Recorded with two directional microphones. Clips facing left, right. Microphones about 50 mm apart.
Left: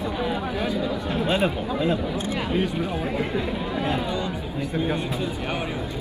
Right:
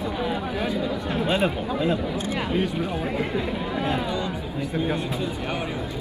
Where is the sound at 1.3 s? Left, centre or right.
Centre.